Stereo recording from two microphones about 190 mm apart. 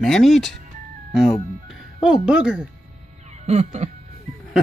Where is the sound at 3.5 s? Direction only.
35° right (ahead or behind).